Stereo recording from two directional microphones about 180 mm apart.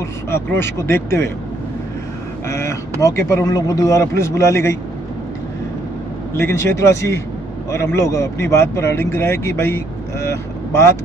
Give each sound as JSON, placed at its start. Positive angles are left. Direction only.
{"t": 0.3, "sound": "speech", "side_deg": 15}
{"t": 2.4, "sound": "speech", "side_deg": 15}
{"t": 6.3, "sound": "speech", "side_deg": 15}
{"t": 10.2, "sound": "vehicle", "side_deg": 15}